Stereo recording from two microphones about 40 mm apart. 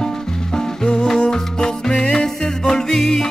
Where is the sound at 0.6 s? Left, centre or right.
Left.